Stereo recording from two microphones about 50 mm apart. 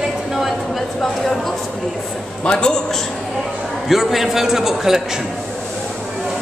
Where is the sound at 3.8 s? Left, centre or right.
Centre.